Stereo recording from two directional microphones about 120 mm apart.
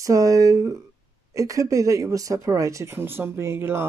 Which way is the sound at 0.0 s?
25° right (ahead or behind).